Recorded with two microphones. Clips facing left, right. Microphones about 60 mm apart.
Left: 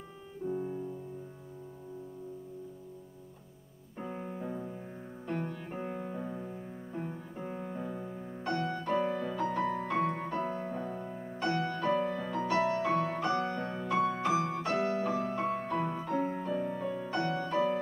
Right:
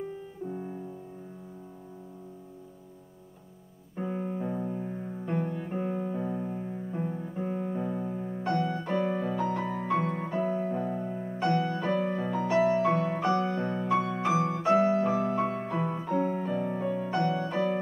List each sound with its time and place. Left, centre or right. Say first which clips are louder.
0.5 s piano: left 4 dB; centre
4.0 s music: right 6 dB; centre
15.0 s music: right 5 dB; right
15.3 s music: right 3 dB; centre
16.6 s music: right 4 dB; centre